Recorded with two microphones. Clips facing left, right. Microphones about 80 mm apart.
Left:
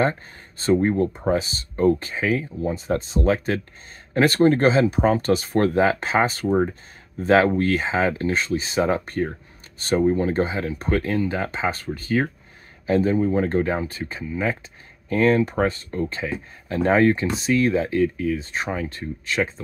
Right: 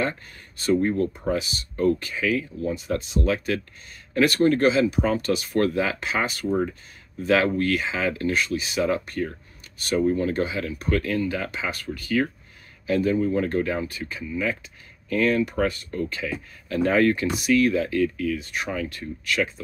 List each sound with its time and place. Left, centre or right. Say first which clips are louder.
0.0 s speech: left 5 dB; left